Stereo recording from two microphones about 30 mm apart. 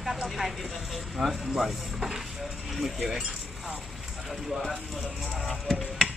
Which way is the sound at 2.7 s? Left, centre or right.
Centre.